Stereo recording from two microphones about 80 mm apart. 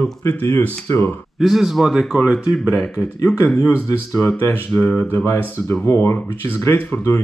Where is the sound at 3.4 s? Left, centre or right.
Centre.